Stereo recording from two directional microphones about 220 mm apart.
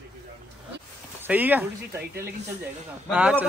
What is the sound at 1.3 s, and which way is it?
Speech, 10° right (ahead or behind).